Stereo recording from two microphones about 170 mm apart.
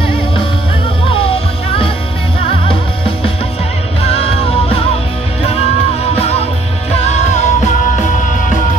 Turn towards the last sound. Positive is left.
turn(degrees=40)  # may be behind; listen again after turning